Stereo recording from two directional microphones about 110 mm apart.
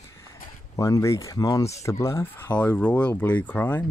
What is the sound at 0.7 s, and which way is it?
Speech, 30° left (ahead or behind).